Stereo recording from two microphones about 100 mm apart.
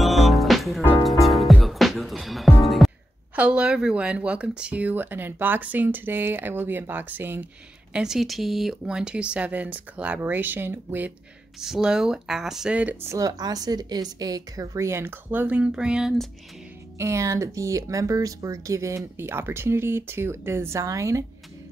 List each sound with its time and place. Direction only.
0.0 s music: centre (ahead or behind)
3.3 s speech: 10° right (ahead or behind)
7.9 s speech: 5° right (ahead or behind)
11.6 s speech: 5° right (ahead or behind)
13.1 s a woman's voice: 40° right (ahead or behind); by 16.3 s 5° right (ahead or behind)
17.0 s speech: 30° right (ahead or behind)